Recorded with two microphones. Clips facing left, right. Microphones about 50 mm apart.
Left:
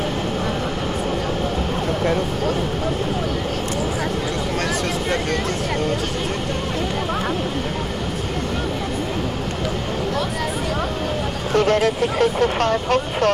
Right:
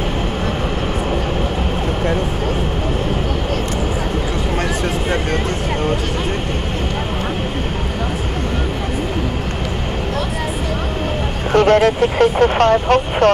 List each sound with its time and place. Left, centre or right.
11.5 s speech: right